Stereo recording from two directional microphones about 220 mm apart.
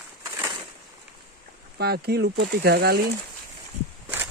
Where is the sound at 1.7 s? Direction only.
45° right (ahead or behind).